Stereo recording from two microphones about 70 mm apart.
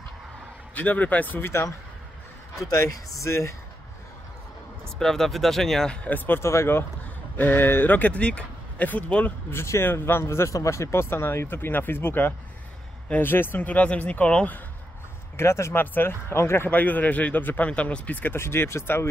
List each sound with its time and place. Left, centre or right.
0.7 s speech: left
3.2 s speech: left
4.9 s speech: centre
6.0 s speech: left
6.4 s speech: left
7.3 s speech: left
9.5 s speech: left; by 14.6 s centre
15.3 s speech: left
15.8 s speech: left
16.7 s speech: left